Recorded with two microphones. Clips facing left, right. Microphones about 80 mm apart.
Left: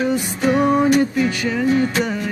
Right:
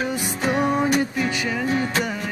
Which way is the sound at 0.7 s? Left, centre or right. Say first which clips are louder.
Left 5 dB; centre.